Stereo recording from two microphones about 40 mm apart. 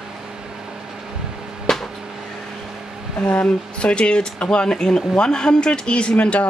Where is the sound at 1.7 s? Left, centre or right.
Centre.